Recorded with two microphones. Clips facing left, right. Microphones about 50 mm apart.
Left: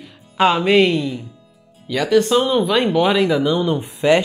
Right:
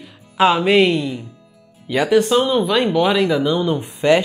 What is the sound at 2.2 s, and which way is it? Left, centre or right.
Speech, centre.